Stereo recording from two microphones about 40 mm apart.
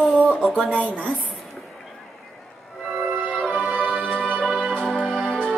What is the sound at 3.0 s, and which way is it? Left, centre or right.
Music, right.